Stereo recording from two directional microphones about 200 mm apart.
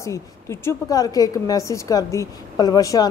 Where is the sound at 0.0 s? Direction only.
15° left (ahead or behind).